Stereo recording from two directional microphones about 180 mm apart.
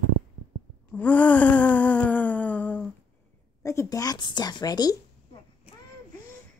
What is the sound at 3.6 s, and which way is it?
A woman's voice, 15° left (ahead or behind).